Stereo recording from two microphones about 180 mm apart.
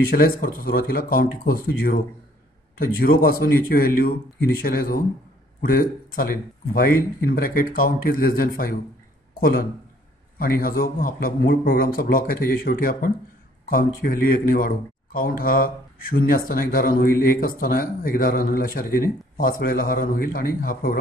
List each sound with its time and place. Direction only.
0.1 s a man's voice: 55° left (ahead or behind)